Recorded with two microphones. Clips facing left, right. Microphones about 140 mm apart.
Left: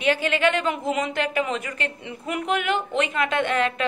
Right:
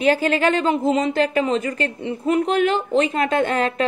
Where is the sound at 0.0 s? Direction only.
35° right (ahead or behind).